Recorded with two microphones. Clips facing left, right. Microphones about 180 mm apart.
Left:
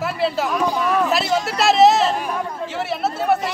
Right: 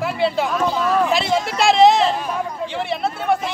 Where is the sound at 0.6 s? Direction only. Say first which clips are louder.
Right 1 dB; 10° left (ahead or behind).